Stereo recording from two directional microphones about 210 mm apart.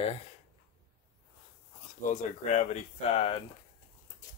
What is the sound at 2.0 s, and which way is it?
Speech, 35° left (ahead or behind).